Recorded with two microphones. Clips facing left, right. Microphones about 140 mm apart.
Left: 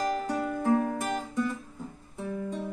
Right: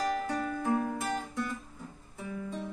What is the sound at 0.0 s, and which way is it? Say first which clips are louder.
Music: left 2 dB; 15° left (ahead or behind).